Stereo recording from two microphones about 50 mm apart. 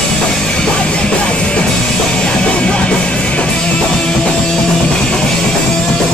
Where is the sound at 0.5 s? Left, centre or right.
Centre.